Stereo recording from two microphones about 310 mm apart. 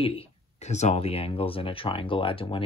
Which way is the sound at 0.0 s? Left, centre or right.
Centre.